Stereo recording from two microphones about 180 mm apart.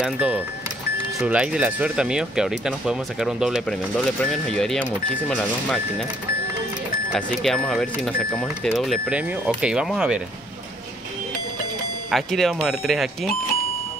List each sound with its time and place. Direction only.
0.0 s speech: 5° right (ahead or behind)
7.1 s speech: centre (ahead or behind)
12.1 s speech: centre (ahead or behind)